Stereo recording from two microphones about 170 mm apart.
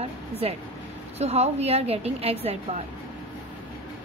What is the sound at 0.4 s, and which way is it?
A woman's voice, 35° right (ahead or behind).